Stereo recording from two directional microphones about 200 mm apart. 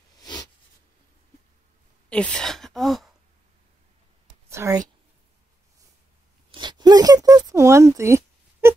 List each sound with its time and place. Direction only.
0.2 s a sound: 20° left (ahead or behind)
2.0 s speech: 5° left (ahead or behind)
4.5 s whispering: 15° right (ahead or behind)
6.5 s zipper: 20° right (ahead or behind)